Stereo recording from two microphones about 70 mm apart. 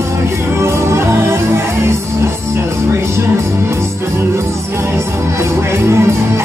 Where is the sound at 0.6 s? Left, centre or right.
Right.